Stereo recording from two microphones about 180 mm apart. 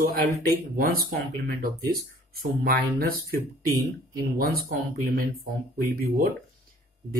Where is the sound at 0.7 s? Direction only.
55° right (ahead or behind).